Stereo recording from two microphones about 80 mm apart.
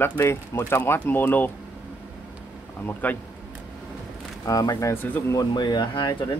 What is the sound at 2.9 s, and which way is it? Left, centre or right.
Speech, left.